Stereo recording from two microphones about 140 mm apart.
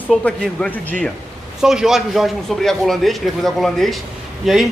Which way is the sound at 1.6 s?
5° right (ahead or behind).